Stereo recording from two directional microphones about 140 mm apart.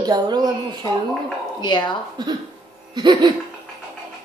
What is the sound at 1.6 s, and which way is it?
Speech, 30° left (ahead or behind).